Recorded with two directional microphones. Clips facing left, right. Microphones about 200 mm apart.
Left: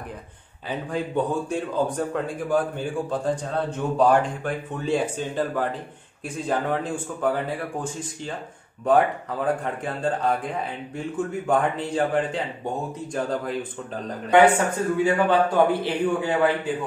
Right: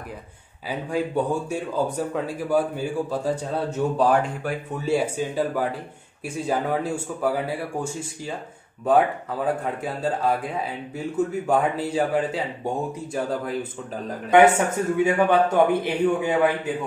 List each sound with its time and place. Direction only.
0.7 s speech: 10° right (ahead or behind)
14.3 s a man's voice: 20° right (ahead or behind)